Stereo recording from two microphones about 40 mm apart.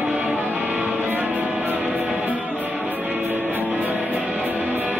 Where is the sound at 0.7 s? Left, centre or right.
Right.